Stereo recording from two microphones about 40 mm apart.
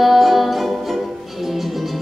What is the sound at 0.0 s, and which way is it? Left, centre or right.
Music, centre.